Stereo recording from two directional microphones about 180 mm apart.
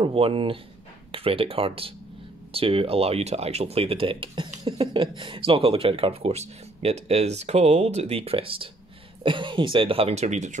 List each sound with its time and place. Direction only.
0.0 s speech: 30° right (ahead or behind)